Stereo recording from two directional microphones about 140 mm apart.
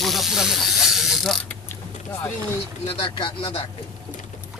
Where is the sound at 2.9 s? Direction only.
40° left (ahead or behind).